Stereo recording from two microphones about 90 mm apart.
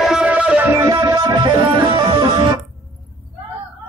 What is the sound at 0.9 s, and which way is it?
Music, 50° right (ahead or behind).